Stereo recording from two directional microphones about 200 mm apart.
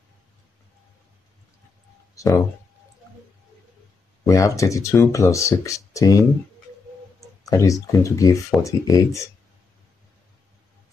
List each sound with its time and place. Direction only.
2.1 s speech: 15° left (ahead or behind)
4.3 s speech: 15° left (ahead or behind)
7.4 s speech: 15° left (ahead or behind)